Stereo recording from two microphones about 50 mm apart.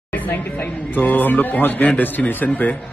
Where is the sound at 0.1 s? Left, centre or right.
Left.